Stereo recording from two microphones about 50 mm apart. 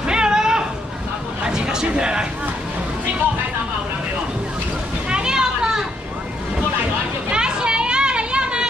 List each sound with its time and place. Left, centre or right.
0.0 s a sound: centre
5.1 s children playing: centre
7.2 s children playing: centre